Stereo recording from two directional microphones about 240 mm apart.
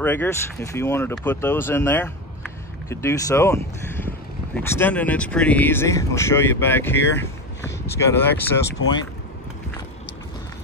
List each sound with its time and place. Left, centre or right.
0.0 s speech: centre